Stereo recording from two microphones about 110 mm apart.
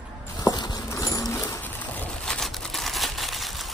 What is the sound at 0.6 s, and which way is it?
Clip-clop, 35° left (ahead or behind).